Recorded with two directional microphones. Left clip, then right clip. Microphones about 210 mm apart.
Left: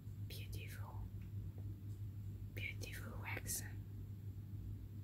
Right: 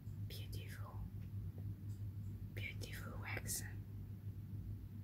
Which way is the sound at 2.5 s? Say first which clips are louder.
Left 2 dB; 10° left (ahead or behind).